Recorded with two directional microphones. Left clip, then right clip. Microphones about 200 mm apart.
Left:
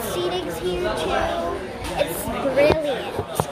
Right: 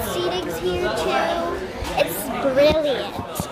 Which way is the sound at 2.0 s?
15° right (ahead or behind).